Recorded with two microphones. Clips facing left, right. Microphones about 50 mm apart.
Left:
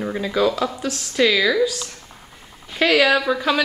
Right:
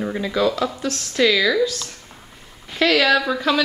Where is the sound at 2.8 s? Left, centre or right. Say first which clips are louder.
Even; centre.